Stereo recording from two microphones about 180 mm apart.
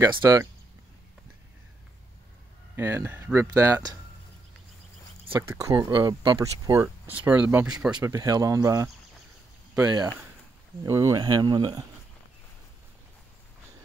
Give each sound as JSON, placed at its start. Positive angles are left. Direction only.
{"t": 0.0, "sound": "speech", "side_deg": -20}
{"t": 2.7, "sound": "speech", "side_deg": -15}
{"t": 5.3, "sound": "speech", "side_deg": -15}
{"t": 8.0, "sound": "speech", "side_deg": -15}